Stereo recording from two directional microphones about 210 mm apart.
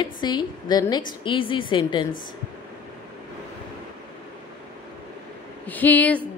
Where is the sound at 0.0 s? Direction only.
20° left (ahead or behind).